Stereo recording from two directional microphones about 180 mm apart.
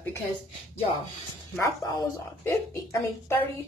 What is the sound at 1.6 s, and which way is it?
A woman's voice, 20° left (ahead or behind).